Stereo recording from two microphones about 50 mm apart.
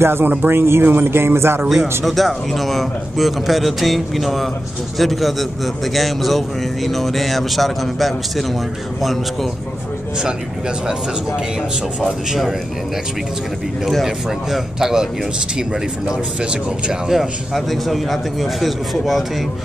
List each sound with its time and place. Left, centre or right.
0.0 s speech: right
1.7 s speech: centre
12.0 s speech: centre
14.0 s speech: centre
16.1 s speech: right
17.1 s speech: centre